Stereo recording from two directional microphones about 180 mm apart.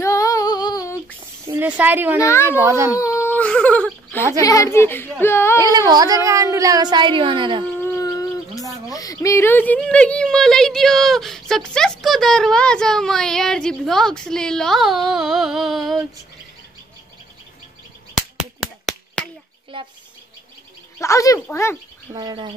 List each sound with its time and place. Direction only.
0.0 s female singing: 15° left (ahead or behind)
1.5 s speech: 10° right (ahead or behind)
2.1 s speech: 15° left (ahead or behind)
2.6 s a child's voice: 15° right (ahead or behind)
3.0 s baby cry: 15° left (ahead or behind)
4.4 s speech: 20° left (ahead or behind)
5.6 s speech: 20° right (ahead or behind)
8.0 s bird: 20° left (ahead or behind)
8.8 s speech: 20° left (ahead or behind); by 16.0 s centre (ahead or behind)
18.1 s a sound: centre (ahead or behind)
19.7 s speech: 30° right (ahead or behind)
21.0 s speech: 15° left (ahead or behind)
22.1 s speech: 25° right (ahead or behind)